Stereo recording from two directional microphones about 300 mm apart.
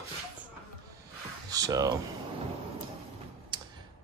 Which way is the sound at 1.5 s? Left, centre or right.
Centre.